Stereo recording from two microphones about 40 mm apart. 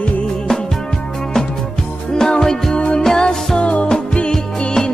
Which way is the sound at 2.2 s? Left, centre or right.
Centre.